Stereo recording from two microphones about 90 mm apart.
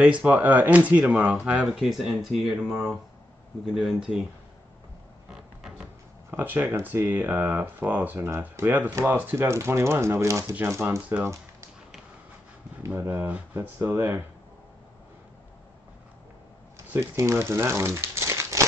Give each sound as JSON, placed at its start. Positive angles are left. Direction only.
{"t": 0.0, "sound": "speech", "side_deg": -15}
{"t": 5.3, "sound": "music", "side_deg": -5}
{"t": 6.3, "sound": "speech", "side_deg": -20}
{"t": 12.9, "sound": "speech", "side_deg": -25}
{"t": 16.7, "sound": "speech", "side_deg": -30}